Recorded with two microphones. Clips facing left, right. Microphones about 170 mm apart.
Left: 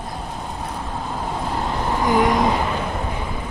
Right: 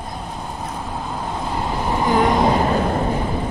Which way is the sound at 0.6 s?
Centre (ahead or behind).